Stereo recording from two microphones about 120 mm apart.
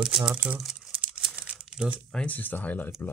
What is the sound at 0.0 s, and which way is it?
Speech, 5° right (ahead or behind).